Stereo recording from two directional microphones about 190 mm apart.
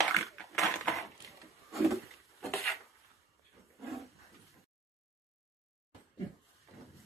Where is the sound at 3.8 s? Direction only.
Centre (ahead or behind).